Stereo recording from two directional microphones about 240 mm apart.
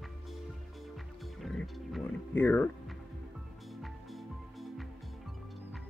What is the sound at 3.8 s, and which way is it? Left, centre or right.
Music, centre.